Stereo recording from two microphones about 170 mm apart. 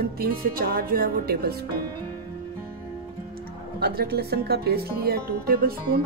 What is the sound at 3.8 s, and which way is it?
Speech, 65° right (ahead or behind).